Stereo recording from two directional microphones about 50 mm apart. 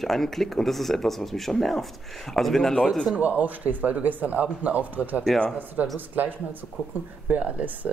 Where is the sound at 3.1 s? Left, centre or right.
Right.